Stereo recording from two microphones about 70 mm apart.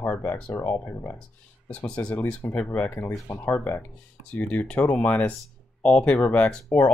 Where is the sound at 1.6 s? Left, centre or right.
Centre.